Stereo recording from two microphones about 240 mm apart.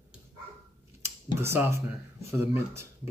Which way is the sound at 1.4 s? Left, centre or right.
Centre.